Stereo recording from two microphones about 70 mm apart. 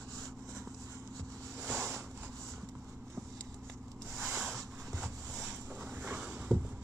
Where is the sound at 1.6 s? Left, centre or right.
Centre.